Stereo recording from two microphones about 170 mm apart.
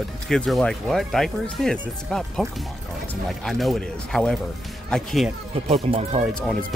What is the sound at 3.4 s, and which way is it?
Speech, centre (ahead or behind).